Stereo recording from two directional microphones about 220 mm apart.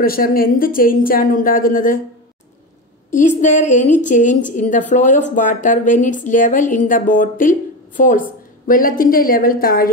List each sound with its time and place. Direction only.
0.0 s a woman's voice: 40° left (ahead or behind)
3.3 s a woman's voice: 35° left (ahead or behind)